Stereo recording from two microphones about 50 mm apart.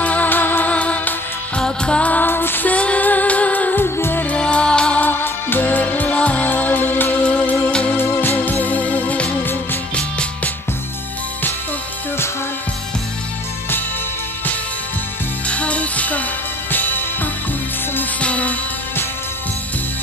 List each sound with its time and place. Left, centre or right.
0.0 s music: left
0.7 s music: left
2.2 s music: left
2.7 s music: left
3.8 s music: left
4.4 s music: left
5.0 s music: left
6.5 s music: left
7.2 s music: left
8.0 s music: left
9.4 s music: left
9.9 s music: left
15.4 s music: left
18.2 s music: left